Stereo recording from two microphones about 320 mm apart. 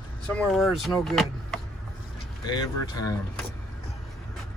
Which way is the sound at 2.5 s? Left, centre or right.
Centre.